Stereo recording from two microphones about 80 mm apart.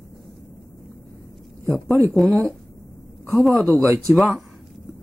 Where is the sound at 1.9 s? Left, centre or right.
Right.